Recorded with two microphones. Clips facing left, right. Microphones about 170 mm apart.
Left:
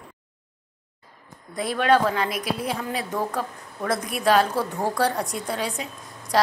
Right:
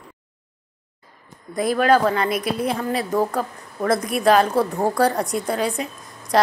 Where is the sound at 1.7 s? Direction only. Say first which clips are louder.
Right 3 dB; centre (ahead or behind).